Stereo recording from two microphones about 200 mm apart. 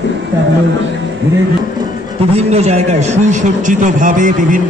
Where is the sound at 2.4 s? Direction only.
35° right (ahead or behind).